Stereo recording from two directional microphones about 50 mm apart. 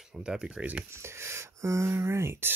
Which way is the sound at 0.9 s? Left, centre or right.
Right.